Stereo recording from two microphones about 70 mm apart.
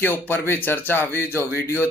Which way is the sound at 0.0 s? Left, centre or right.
Left.